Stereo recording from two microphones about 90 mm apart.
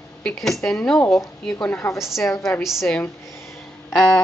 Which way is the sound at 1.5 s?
15° left (ahead or behind).